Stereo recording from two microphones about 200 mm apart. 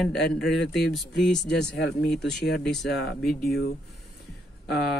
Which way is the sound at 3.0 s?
50° left (ahead or behind).